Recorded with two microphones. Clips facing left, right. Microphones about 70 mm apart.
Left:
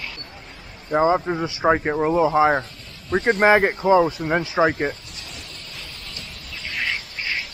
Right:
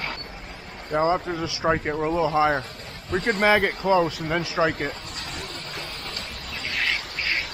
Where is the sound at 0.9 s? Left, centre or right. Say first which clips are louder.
Left 4 dB; left.